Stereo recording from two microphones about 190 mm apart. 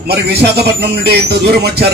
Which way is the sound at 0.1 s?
60° right (ahead or behind).